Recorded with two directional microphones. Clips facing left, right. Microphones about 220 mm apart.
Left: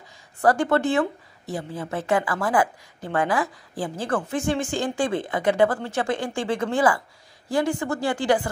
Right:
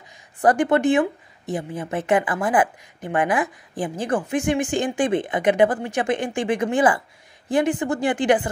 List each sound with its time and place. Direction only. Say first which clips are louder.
0.4 s speech: right 2 dB; 20° right (ahead or behind)